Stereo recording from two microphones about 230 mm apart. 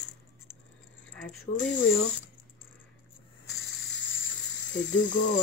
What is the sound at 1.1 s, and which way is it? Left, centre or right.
Speech, centre.